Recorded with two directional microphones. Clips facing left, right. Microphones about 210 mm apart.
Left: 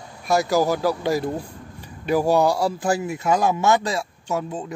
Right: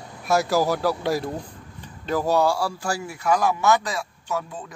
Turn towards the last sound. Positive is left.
turn(degrees=25)  # may be behind; listen again after turning